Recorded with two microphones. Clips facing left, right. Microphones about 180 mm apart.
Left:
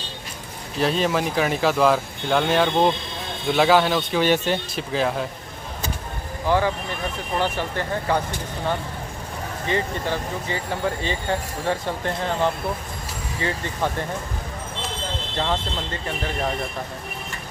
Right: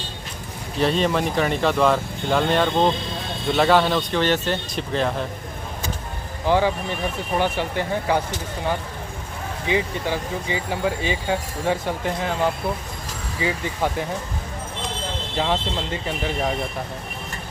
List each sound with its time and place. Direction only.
0.7 s speech: centre (ahead or behind)
6.4 s speech: 15° right (ahead or behind)
13.4 s speech: 10° right (ahead or behind)
15.3 s speech: 10° right (ahead or behind)